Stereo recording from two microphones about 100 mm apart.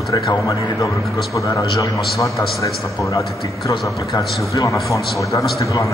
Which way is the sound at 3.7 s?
35° left (ahead or behind).